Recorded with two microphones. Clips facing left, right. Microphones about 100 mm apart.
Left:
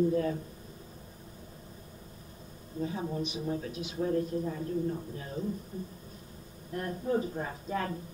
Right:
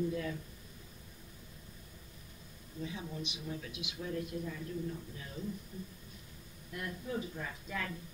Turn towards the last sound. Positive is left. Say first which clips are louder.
# left 7 dB
turn(degrees=40)  # may be behind; listen again after turning